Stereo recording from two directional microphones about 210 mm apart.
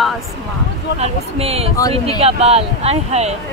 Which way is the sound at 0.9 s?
30° right (ahead or behind).